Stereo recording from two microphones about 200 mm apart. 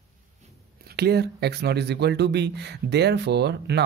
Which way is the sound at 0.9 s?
55° right (ahead or behind).